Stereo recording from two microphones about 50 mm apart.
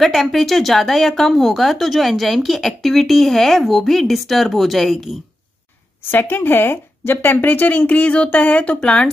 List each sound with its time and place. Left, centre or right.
0.0 s speech: centre
6.0 s speech: left